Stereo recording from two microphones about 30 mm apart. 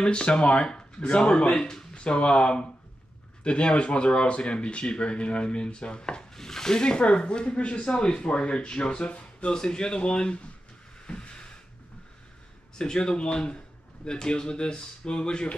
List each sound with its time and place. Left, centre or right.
0.0 s speech: left
0.7 s speech: left
6.3 s speech: centre; by 9.5 s left
9.5 s speech: left
11.1 s a sound: left
12.7 s speech: left